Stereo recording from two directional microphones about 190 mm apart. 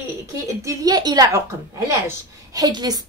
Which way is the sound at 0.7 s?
20° right (ahead or behind).